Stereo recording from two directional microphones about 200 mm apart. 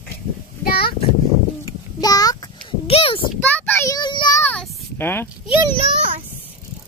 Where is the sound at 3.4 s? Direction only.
10° left (ahead or behind).